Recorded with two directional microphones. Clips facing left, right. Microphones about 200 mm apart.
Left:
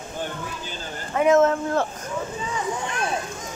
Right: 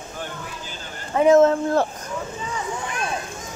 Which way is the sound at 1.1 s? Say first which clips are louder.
Right 3 dB; 30° right (ahead or behind).